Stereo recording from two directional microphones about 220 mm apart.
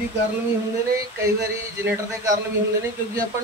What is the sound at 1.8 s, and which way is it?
Speech, 10° right (ahead or behind).